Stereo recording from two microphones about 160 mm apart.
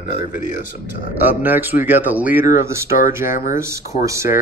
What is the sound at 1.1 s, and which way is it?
Speech, 10° right (ahead or behind).